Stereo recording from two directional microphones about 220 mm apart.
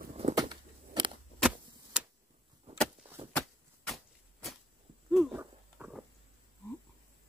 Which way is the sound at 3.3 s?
Centre (ahead or behind).